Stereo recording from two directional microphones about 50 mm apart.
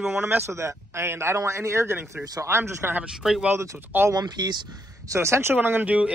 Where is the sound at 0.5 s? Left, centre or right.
Right.